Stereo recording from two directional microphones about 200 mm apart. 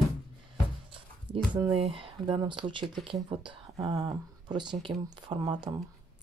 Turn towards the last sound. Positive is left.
turn(degrees=-20)  # may be behind; listen again after turning